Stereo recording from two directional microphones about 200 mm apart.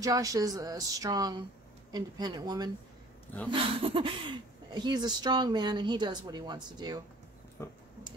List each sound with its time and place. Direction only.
0.0 s speech: 15° right (ahead or behind)
3.8 s speech: 25° right (ahead or behind)
7.6 s a sound: 10° left (ahead or behind)